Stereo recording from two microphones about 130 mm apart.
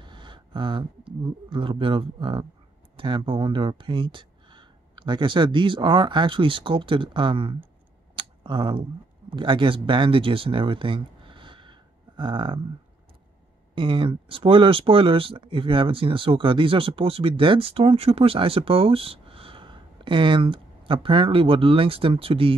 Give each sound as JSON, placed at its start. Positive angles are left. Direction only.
{"t": 0.0, "sound": "speech", "side_deg": -35}
{"t": 8.2, "sound": "a sound", "side_deg": -40}
{"t": 9.3, "sound": "speech", "side_deg": -40}
{"t": 13.7, "sound": "speech", "side_deg": -40}